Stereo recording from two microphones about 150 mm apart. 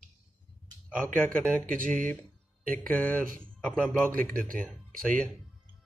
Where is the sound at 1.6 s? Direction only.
65° right (ahead or behind).